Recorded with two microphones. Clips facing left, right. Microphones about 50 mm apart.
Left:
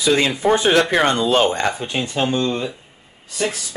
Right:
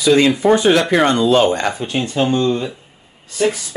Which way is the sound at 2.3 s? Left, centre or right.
Right.